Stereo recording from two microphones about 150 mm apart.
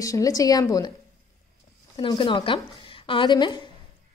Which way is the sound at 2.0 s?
35° left (ahead or behind).